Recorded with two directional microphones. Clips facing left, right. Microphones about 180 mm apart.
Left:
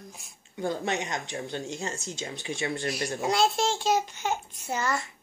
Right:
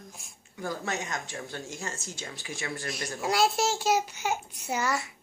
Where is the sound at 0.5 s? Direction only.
25° left (ahead or behind).